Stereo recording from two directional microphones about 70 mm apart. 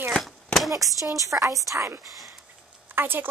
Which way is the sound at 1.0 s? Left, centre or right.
Right.